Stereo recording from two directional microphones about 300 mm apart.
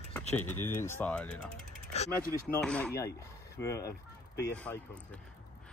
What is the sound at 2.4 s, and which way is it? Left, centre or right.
Speech, centre.